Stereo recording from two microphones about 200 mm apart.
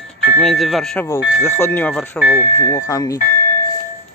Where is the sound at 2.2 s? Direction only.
50° left (ahead or behind).